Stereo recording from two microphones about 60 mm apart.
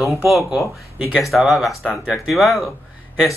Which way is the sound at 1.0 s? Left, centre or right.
Centre.